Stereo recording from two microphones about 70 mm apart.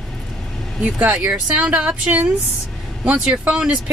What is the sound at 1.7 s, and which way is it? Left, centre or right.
Speech, right.